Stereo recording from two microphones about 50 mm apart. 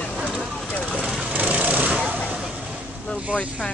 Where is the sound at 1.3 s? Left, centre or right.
Right.